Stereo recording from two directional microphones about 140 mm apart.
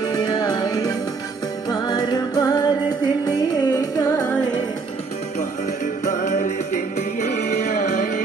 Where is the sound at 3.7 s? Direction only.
20° left (ahead or behind).